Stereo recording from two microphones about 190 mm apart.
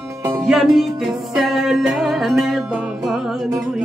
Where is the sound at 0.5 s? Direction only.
Centre (ahead or behind).